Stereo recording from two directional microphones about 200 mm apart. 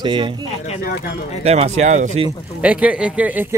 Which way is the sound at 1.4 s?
30° right (ahead or behind).